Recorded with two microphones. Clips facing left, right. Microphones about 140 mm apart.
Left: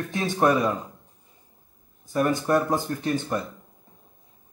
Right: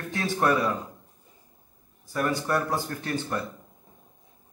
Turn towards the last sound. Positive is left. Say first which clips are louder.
# left 4 dB
turn(degrees=20)  # may be behind; listen again after turning